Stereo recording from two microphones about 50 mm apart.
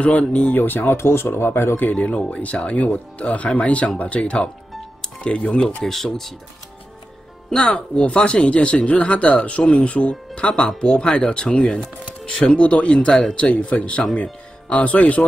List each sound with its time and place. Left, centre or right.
0.0 s speech: left
0.9 s speech: left
1.8 s speech: left
5.9 s speech: centre
7.5 s speech: centre
10.8 s chopping: centre
12.3 s speech: centre